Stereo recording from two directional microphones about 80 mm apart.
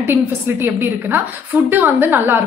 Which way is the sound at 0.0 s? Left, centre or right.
Right.